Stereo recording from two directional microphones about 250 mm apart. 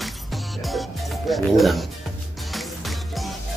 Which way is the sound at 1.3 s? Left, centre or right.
Centre.